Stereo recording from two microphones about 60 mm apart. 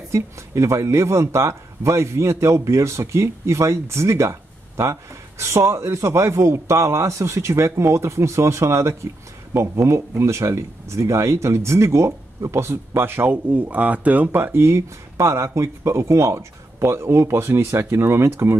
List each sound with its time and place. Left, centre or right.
0.1 s a man's voice: right
13.3 s speech: right
14.8 s a man's voice: right